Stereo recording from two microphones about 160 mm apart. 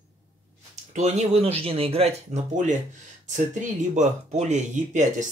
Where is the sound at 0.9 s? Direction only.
45° right (ahead or behind).